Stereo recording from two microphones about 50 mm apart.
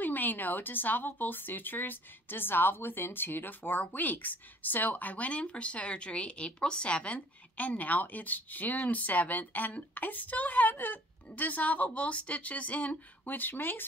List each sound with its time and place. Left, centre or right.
0.0 s speech: left